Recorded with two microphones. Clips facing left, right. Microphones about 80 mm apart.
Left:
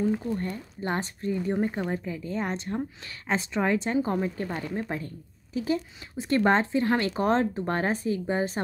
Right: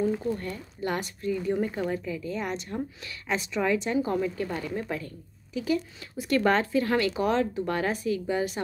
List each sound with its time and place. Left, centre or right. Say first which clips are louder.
0.1 s a woman's voice: left 1 dB; left